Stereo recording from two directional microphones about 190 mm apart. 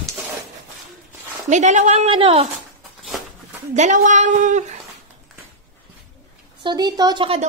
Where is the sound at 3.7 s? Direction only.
40° right (ahead or behind).